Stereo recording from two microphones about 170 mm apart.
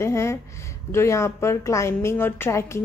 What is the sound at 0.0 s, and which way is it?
A woman's voice, 15° left (ahead or behind).